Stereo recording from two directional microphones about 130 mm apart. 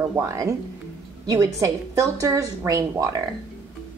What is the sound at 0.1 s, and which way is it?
Speech, 25° right (ahead or behind).